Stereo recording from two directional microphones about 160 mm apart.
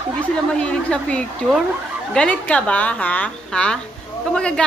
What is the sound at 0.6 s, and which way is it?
Speech, 5° left (ahead or behind).